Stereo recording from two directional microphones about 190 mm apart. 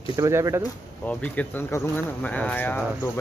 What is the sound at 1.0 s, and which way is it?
Speech, 5° left (ahead or behind).